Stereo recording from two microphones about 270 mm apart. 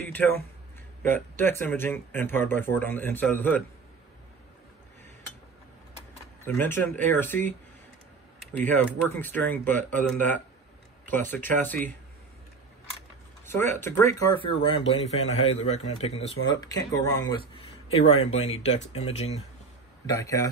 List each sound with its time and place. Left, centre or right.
0.0 s a sound: centre
1.0 s speech: centre
6.4 s speech: centre
8.5 s speech: centre
11.1 s speech: centre
13.7 s speech: centre